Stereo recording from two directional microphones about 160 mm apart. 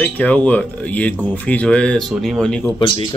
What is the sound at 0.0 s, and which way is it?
A man's voice, 10° left (ahead or behind).